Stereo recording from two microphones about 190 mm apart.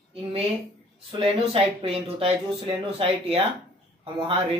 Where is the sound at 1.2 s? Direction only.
30° right (ahead or behind).